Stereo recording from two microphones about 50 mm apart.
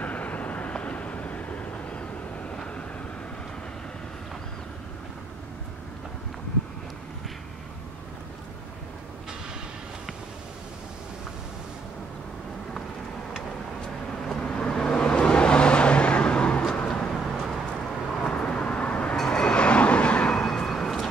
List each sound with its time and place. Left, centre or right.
0.0 s vehicle: left
14.2 s vehicle: centre
17.0 s vehicle: centre
18.2 s vehicle: centre